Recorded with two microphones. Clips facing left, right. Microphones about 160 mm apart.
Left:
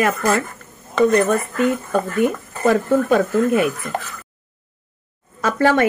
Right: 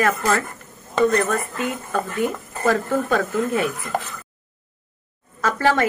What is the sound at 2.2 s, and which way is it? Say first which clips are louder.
Speech: left 5 dB; 20° left (ahead or behind).